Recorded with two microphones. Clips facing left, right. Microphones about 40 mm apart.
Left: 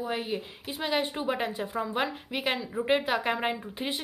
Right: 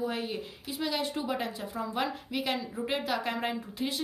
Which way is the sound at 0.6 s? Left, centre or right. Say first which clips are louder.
Left 2 dB; left.